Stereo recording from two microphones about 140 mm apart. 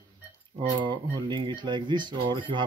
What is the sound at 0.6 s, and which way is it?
Speech, 35° right (ahead or behind).